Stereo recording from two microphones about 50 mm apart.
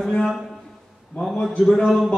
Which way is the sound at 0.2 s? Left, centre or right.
Centre.